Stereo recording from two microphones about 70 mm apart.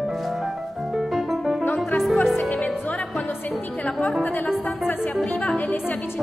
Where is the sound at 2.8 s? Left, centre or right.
Left.